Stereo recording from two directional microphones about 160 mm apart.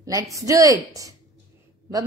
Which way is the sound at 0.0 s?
20° right (ahead or behind).